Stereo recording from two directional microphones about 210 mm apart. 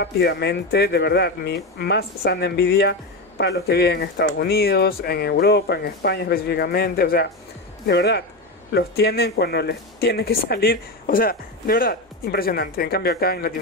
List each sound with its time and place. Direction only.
0.0 s speech: 55° left (ahead or behind)